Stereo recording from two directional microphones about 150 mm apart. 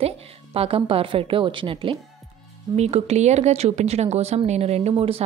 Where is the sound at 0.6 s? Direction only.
40° right (ahead or behind).